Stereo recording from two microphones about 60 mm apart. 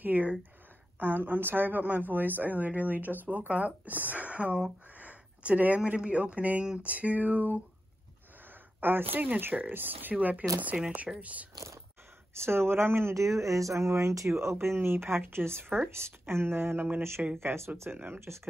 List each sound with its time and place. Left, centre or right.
0.0 s a sound: right
0.9 s a woman's voice: right
4.9 s a sound: right
5.9 s a woman's voice: right
8.8 s a woman's voice: right
10.7 s speech: centre
12.4 s speech: right
13.1 s speech: right
17.4 s speech: right
17.9 s speech: right
18.2 s speech: right